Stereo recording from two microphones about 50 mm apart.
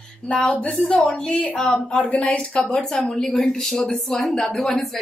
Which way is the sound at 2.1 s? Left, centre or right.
Left.